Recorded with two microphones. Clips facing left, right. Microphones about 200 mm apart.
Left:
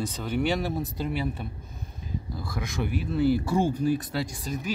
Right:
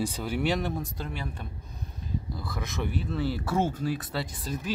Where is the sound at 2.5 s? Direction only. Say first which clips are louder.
Left 3 dB; 10° left (ahead or behind).